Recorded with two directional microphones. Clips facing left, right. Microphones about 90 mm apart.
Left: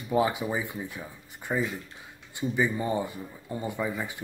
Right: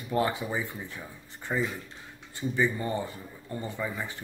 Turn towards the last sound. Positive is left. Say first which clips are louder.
# left 3 dB
turn(degrees=15)  # may be behind; listen again after turning